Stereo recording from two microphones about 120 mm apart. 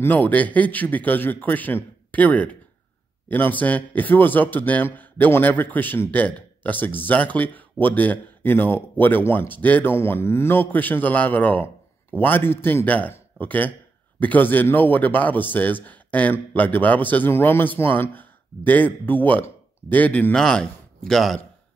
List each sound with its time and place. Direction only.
0.0 s a man's voice: 15° left (ahead or behind)